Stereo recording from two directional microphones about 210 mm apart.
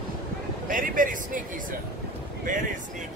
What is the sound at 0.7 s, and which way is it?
Vehicle, 40° right (ahead or behind).